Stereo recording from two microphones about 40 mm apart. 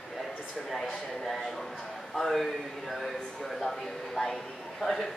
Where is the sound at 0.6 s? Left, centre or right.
Centre.